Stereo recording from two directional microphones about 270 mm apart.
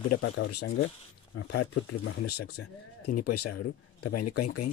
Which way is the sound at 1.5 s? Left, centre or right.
Left.